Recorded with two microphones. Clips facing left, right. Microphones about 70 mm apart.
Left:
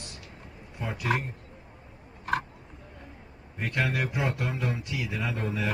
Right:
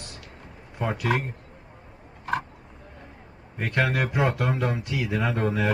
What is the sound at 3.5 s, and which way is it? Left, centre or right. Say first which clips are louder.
Speech: right 4 dB; right.